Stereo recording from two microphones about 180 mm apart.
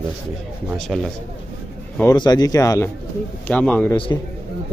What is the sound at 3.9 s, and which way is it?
Speech, 25° left (ahead or behind).